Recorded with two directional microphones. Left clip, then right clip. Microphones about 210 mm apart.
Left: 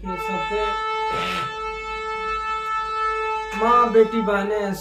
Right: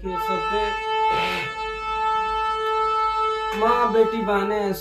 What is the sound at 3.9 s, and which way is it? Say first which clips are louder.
Speech: left 2 dB; 20° left (ahead or behind).